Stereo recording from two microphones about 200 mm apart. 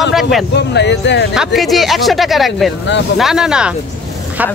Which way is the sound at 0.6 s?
60° left (ahead or behind).